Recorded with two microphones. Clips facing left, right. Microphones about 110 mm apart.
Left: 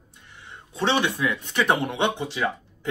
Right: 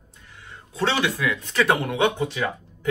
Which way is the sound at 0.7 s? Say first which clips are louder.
Even; 20° left (ahead or behind).